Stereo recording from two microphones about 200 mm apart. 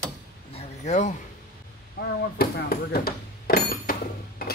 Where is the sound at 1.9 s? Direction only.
50° left (ahead or behind).